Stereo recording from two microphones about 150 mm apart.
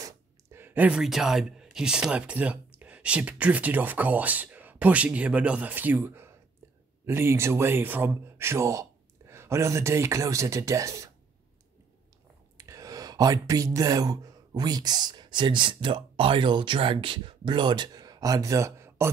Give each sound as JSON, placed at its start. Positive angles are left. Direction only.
{"t": 0.0, "sound": "speech", "side_deg": -15}
{"t": 12.5, "sound": "speech", "side_deg": -20}